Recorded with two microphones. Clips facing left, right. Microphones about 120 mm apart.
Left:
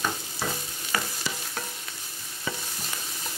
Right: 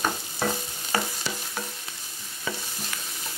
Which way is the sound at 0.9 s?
30° right (ahead or behind).